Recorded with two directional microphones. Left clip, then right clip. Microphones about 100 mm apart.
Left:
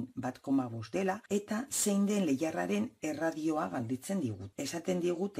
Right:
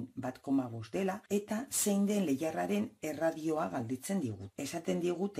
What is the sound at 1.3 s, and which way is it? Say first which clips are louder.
Speech: left 1 dB; 35° left (ahead or behind).